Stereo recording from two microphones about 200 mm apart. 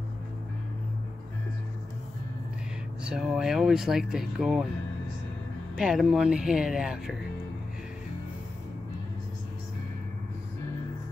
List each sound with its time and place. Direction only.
3.0 s speech: 5° right (ahead or behind)
5.8 s speech: 5° right (ahead or behind)